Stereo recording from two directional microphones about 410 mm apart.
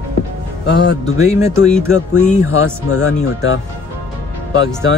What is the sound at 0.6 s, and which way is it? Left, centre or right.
Speech, left.